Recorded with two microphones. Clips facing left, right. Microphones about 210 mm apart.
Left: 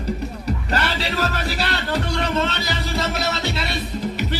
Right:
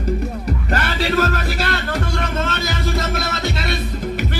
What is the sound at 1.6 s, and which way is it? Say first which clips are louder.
Music: right 1 dB; 50° right (ahead or behind).